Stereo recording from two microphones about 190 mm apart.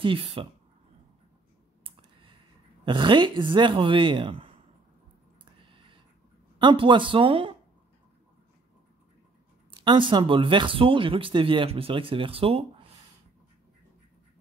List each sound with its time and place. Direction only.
0.0 s speech: 25° right (ahead or behind)
1.9 s clicking: 30° right (ahead or behind)
2.8 s speech: 25° right (ahead or behind)
5.4 s a sound: 25° right (ahead or behind)
6.6 s speech: 25° right (ahead or behind)
9.7 s speech: 25° right (ahead or behind)